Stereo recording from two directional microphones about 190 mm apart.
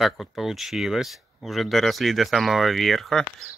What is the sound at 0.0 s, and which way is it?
Speech, centre (ahead or behind).